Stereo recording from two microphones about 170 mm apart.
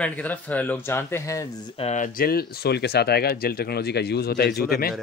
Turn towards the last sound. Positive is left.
turn(degrees=60)  # may be behind; listen again after turning